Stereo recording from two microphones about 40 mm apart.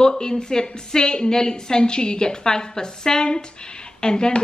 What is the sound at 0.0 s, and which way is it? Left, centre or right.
A woman's voice, centre.